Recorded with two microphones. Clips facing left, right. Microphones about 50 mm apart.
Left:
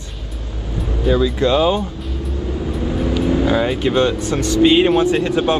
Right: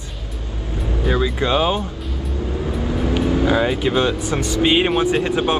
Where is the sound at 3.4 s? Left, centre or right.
Centre.